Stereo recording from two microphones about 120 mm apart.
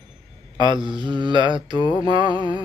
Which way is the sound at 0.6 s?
40° right (ahead or behind).